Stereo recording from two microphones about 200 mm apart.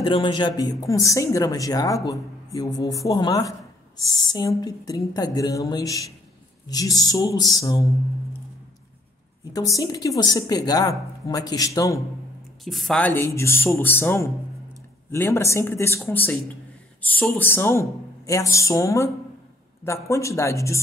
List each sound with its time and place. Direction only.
0.0 s speech: 25° left (ahead or behind)
9.4 s a woman's voice: 20° left (ahead or behind)
12.6 s speech: centre (ahead or behind)